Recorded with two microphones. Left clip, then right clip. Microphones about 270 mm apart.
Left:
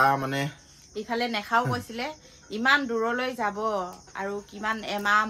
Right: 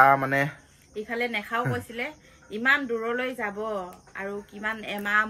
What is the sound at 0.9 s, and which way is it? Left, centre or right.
Speech, left.